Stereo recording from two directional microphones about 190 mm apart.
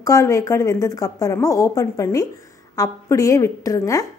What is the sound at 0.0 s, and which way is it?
A woman's voice, 15° left (ahead or behind).